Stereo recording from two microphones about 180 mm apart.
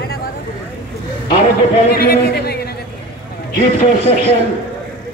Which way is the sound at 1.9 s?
60° left (ahead or behind).